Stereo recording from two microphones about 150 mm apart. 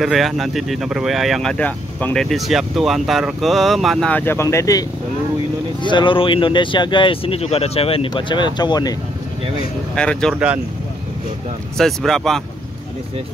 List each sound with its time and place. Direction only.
0.0 s speech: centre (ahead or behind)
4.1 s speech: 15° left (ahead or behind)
5.9 s speech: 35° left (ahead or behind)
9.9 s speech: 5° left (ahead or behind)
10.3 s speech: 10° right (ahead or behind)
11.8 s speech: centre (ahead or behind)